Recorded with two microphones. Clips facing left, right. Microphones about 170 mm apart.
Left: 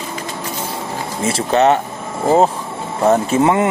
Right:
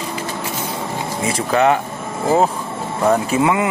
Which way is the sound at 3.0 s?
25° left (ahead or behind).